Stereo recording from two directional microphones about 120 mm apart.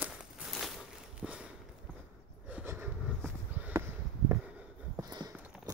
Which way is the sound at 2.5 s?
15° right (ahead or behind).